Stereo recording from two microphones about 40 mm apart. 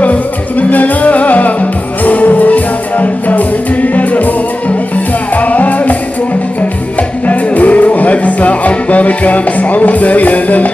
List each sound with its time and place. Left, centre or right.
0.0 s music: left
7.0 s music: left